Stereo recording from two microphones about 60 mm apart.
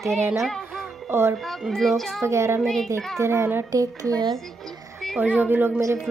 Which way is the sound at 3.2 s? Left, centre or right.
Right.